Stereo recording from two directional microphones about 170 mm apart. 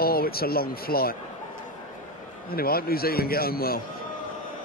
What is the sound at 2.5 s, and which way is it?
A man's voice, 60° left (ahead or behind).